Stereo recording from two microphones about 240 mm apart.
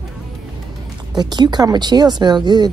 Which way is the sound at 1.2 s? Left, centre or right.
Centre.